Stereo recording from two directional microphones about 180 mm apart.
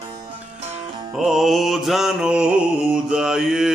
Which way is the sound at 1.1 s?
Centre (ahead or behind).